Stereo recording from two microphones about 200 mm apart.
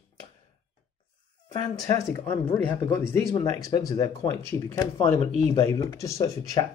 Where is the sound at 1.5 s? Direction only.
20° left (ahead or behind).